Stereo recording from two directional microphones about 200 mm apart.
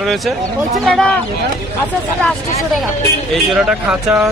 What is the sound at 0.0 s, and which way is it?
Speech, centre (ahead or behind).